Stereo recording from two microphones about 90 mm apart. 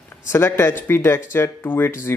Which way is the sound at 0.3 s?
30° left (ahead or behind).